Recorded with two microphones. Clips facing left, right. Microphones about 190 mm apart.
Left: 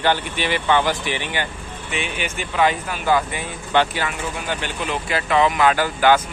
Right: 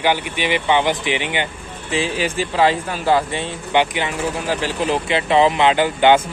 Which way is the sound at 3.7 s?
20° right (ahead or behind).